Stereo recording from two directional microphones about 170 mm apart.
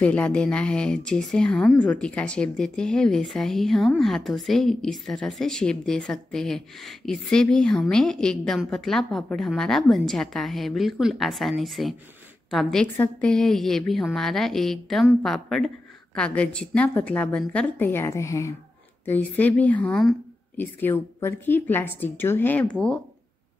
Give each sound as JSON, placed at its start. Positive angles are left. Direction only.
{"t": 0.0, "sound": "a woman's voice", "side_deg": 10}
{"t": 20.8, "sound": "a woman's voice", "side_deg": 15}